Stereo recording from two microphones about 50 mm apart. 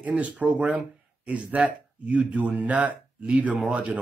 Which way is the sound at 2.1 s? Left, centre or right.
Right.